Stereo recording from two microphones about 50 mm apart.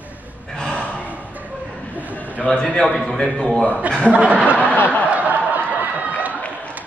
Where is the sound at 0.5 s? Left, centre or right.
Centre.